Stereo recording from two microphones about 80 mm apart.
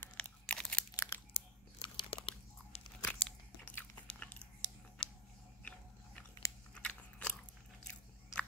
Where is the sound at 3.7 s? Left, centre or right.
Centre.